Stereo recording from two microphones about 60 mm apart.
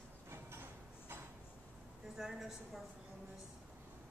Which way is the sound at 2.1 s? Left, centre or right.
Centre.